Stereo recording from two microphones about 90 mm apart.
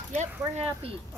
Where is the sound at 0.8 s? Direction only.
90° right.